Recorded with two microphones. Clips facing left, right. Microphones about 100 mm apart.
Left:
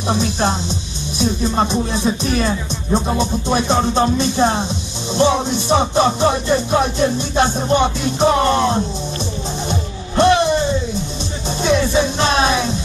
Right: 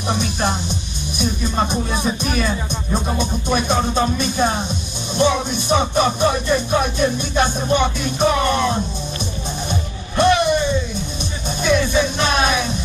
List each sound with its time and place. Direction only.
0.1 s music: 30° left (ahead or behind)
2.3 s speech: 30° left (ahead or behind)
3.2 s music: 30° left (ahead or behind)